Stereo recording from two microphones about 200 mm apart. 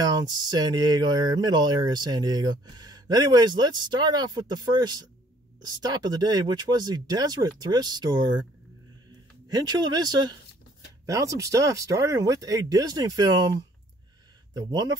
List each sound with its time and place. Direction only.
0.0 s speech: 20° right (ahead or behind)
9.5 s speech: 20° right (ahead or behind)
14.5 s speech: 20° right (ahead or behind)